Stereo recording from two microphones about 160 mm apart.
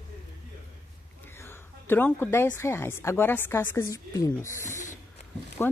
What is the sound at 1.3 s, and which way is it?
A woman's voice, 15° left (ahead or behind).